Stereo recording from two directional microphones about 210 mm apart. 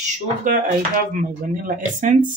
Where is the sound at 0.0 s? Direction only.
40° right (ahead or behind).